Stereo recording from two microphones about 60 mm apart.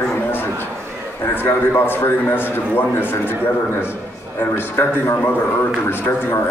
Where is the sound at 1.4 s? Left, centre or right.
Left.